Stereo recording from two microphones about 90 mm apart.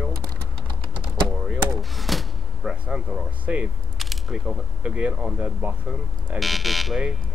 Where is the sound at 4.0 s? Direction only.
Centre (ahead or behind).